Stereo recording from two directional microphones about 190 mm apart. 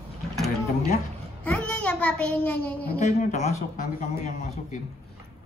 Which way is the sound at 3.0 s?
40° left (ahead or behind).